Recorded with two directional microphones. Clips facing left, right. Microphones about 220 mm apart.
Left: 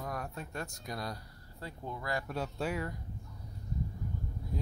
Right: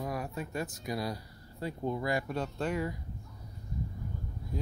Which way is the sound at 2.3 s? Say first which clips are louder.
Right 2 dB; 5° left (ahead or behind).